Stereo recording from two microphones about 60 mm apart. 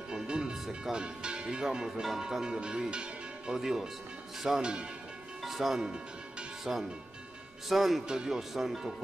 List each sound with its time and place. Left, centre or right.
0.1 s speech: centre
5.4 s music: centre
6.6 s speech: centre